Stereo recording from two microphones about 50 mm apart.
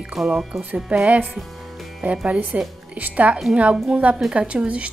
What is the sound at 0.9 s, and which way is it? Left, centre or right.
A woman's voice, right.